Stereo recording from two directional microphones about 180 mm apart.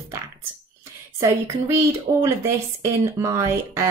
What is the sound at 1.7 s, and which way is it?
Speech, 15° right (ahead or behind).